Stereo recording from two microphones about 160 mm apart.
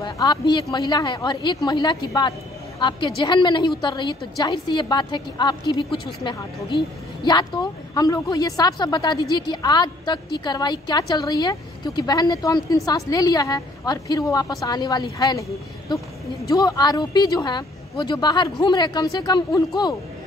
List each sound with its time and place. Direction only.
0.0 s a woman's voice: 25° left (ahead or behind)